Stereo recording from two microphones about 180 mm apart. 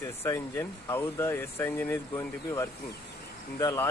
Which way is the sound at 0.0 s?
15° left (ahead or behind).